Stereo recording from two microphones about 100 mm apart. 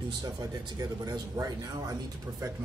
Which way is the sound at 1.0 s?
35° right (ahead or behind).